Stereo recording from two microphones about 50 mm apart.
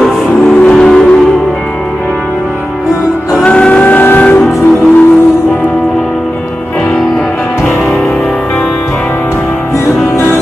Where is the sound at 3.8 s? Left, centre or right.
Left.